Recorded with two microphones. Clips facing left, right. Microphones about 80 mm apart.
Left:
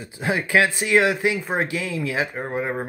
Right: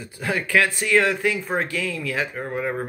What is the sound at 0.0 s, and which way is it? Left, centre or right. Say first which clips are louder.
Speech: left 2 dB; left.